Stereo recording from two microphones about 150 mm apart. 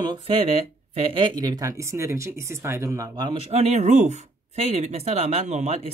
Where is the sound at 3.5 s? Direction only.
45° right (ahead or behind).